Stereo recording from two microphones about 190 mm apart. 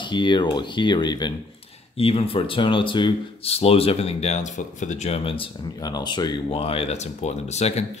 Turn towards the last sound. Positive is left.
turn(degrees=35)  # may be behind; listen again after turning